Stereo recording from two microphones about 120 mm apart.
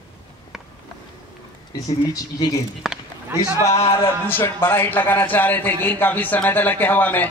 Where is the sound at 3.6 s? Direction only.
55° left (ahead or behind).